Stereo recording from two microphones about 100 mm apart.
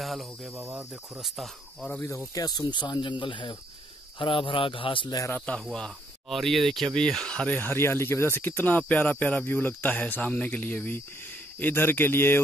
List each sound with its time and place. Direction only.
0.0 s cricket: centre (ahead or behind)
0.6 s cricket: 20° right (ahead or behind)
1.1 s speech: centre (ahead or behind)
1.9 s speech: 20° left (ahead or behind)
2.3 s speech: 40° left (ahead or behind); by 5.1 s 60° left (ahead or behind)
5.7 s speech: 5° left (ahead or behind); by 12.4 s 20° left (ahead or behind)